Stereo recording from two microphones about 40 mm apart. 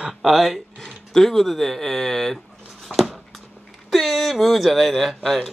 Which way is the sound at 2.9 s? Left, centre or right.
Centre.